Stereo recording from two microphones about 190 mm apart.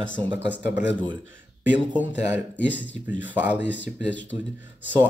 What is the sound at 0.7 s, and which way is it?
Speech, 70° left (ahead or behind).